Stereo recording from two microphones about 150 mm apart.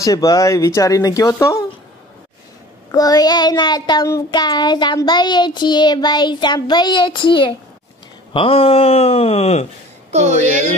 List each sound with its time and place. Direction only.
0.0 s child singing: 25° left (ahead or behind)
2.9 s child singing: 25° left (ahead or behind)
8.3 s speech: 35° left (ahead or behind)
10.1 s a woman's voice: 50° right (ahead or behind)